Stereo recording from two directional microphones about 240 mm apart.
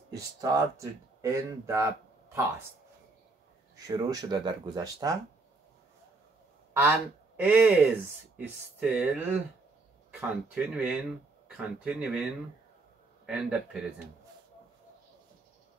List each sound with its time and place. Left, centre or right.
0.1 s speech: centre
3.7 s speech: centre
6.8 s speech: centre